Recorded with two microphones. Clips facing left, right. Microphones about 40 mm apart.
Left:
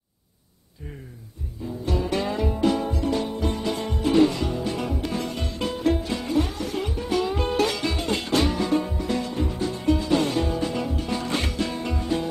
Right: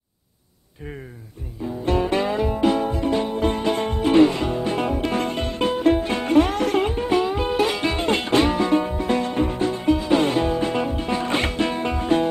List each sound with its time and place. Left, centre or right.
1.9 s music: right
3.4 s music: right
7.2 s music: centre
7.8 s music: right
9.8 s music: right